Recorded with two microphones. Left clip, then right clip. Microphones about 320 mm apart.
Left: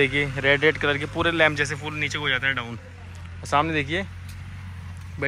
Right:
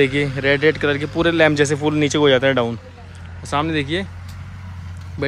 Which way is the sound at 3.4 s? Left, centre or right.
Centre.